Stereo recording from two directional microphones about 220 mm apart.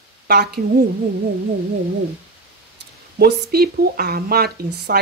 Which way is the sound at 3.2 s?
45° right (ahead or behind).